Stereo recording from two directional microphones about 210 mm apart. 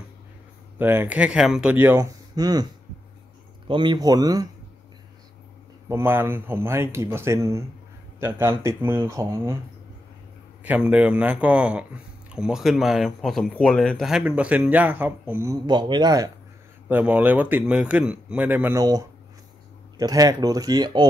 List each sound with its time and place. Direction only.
0.7 s a man's voice: 10° right (ahead or behind)
5.9 s a man's voice: 10° right (ahead or behind)
10.6 s a man's voice: 5° right (ahead or behind)
16.9 s a man's voice: 10° right (ahead or behind)